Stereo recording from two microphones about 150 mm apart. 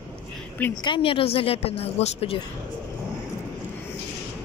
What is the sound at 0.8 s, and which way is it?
A woman's voice, 35° left (ahead or behind).